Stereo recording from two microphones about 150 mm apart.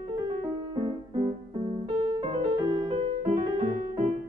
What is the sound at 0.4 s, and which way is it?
Music, 35° right (ahead or behind).